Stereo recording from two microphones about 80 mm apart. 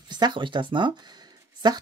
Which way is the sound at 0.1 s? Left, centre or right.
Right.